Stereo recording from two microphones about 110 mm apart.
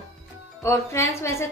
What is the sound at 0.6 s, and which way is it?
Speech, 25° left (ahead or behind).